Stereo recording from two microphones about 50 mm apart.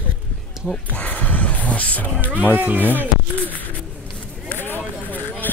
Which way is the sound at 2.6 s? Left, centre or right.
Right.